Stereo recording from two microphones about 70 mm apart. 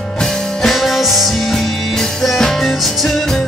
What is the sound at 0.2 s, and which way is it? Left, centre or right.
Music, centre.